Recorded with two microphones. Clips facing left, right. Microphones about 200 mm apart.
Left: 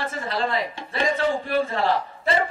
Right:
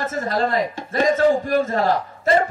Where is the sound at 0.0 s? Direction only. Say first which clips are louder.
Right 5 dB; 45° right (ahead or behind).